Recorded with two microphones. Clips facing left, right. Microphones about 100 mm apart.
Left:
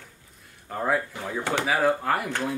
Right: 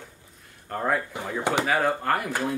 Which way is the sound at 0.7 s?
Centre (ahead or behind).